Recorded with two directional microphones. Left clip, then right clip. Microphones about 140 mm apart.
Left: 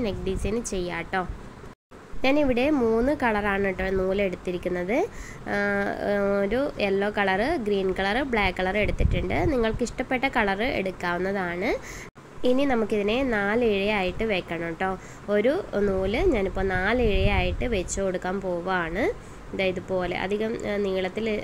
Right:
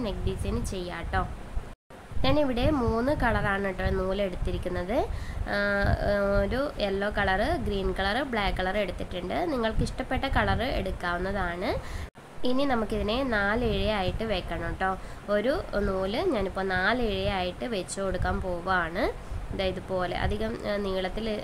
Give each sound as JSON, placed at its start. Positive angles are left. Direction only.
{"t": 0.0, "sound": "speech", "side_deg": 15}
{"t": 2.2, "sound": "speech", "side_deg": 15}